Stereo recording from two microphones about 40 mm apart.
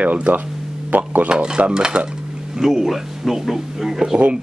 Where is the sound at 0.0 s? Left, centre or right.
Right.